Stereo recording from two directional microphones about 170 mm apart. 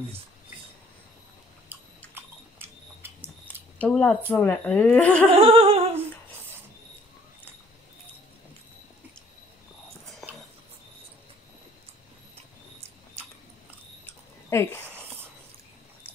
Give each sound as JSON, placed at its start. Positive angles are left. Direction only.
{"t": 1.7, "sound": "chewing", "side_deg": -10}
{"t": 3.7, "sound": "speech", "side_deg": 10}
{"t": 5.3, "sound": "a sound", "side_deg": -35}
{"t": 14.5, "sound": "speech", "side_deg": 15}